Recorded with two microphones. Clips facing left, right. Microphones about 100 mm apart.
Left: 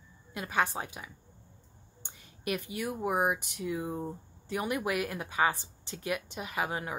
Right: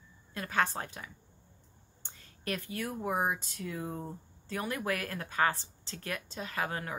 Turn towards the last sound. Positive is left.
turn(degrees=15)  # may be behind; listen again after turning